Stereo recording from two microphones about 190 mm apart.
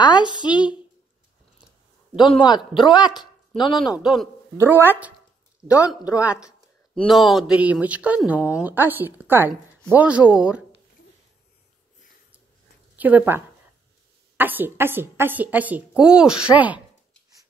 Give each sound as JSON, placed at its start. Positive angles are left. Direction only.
{"t": 0.0, "sound": "a woman's voice", "side_deg": 25}
{"t": 2.1, "sound": "a man's voice", "side_deg": 25}
{"t": 3.2, "sound": "a sound", "side_deg": 25}
{"t": 3.8, "sound": "speech", "side_deg": 0}
{"t": 5.8, "sound": "speech", "side_deg": 15}
{"t": 7.0, "sound": "speech", "side_deg": 0}
{"t": 12.9, "sound": "speech", "side_deg": -10}